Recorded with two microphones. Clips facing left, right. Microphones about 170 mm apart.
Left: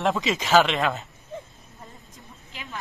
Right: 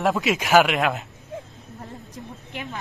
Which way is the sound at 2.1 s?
60° right (ahead or behind).